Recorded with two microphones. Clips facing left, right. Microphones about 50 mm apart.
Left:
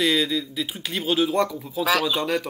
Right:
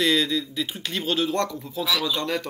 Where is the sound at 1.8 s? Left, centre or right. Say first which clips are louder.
Left 4 dB; left.